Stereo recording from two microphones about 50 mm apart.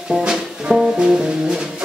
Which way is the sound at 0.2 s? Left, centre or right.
Centre.